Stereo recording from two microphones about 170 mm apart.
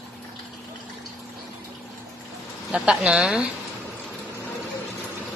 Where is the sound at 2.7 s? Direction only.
Centre (ahead or behind).